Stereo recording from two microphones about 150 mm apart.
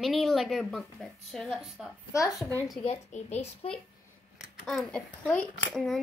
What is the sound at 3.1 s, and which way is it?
Speech, 45° left (ahead or behind).